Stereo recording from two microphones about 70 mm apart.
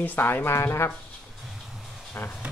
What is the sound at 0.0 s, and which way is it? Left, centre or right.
Speech, left.